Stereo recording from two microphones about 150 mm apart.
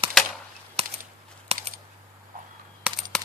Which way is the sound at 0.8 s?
45° right (ahead or behind).